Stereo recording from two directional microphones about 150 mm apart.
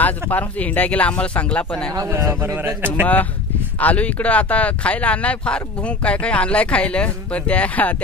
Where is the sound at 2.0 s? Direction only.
20° right (ahead or behind).